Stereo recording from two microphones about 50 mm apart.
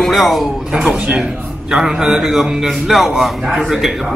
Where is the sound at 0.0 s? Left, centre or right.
Centre.